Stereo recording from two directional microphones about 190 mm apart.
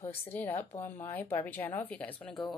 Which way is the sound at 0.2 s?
10° left (ahead or behind).